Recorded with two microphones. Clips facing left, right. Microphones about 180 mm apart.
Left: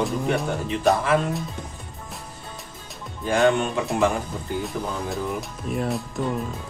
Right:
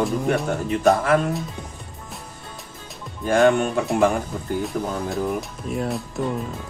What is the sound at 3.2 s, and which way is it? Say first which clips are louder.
Speech: right 3 dB; 50° right (ahead or behind).